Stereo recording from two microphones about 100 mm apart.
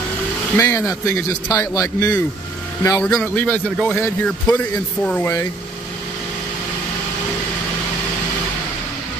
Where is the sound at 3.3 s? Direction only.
15° left (ahead or behind).